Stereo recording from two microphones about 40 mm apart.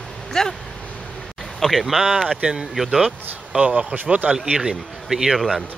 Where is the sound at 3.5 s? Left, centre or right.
Right.